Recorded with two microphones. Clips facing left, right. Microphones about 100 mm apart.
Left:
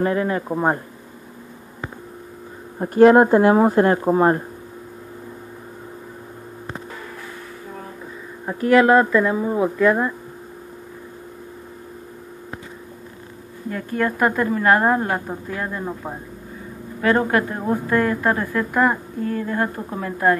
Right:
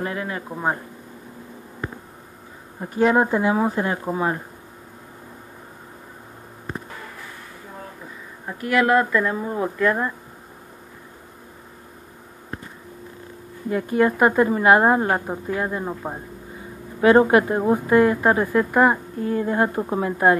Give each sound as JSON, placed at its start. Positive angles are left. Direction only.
{"t": 0.0, "sound": "speech", "side_deg": 30}
{"t": 2.9, "sound": "speech", "side_deg": 60}
{"t": 8.5, "sound": "speech", "side_deg": 30}
{"t": 9.2, "sound": "speech", "side_deg": 10}
{"t": 13.7, "sound": "a woman's voice", "side_deg": -10}
{"t": 19.3, "sound": "a woman's voice", "side_deg": -20}